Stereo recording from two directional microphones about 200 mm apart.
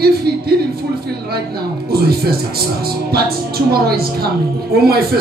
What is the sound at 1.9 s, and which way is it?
A man's voice, 50° right (ahead or behind).